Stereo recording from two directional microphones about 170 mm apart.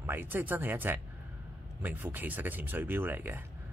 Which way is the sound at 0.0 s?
10° right (ahead or behind).